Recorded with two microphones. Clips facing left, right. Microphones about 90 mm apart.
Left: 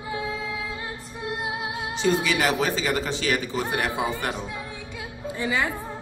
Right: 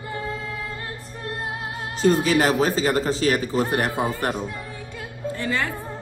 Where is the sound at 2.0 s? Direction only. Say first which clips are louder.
Right 5 dB; 40° right (ahead or behind).